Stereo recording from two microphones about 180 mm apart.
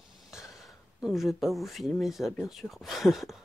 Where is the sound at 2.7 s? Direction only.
Centre (ahead or behind).